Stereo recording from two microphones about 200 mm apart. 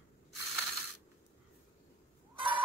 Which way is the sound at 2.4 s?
25° right (ahead or behind).